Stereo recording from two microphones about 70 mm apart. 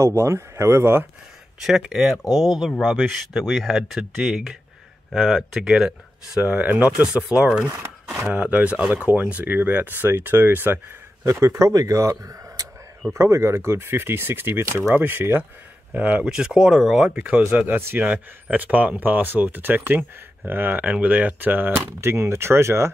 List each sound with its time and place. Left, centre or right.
0.0 s speech: right
1.6 s speech: centre
6.4 s a man's voice: right
11.4 s speech: right
13.1 s speech: right
14.6 s speech: right
15.0 s a man's voice: right
16.3 s a man's voice: centre; by 22.8 s right